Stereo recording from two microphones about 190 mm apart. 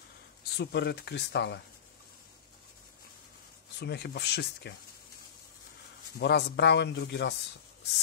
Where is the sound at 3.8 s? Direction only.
60° left (ahead or behind).